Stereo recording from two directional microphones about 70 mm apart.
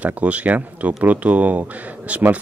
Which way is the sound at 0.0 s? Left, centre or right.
Right.